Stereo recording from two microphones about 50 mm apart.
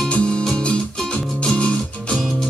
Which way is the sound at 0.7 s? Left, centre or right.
Left.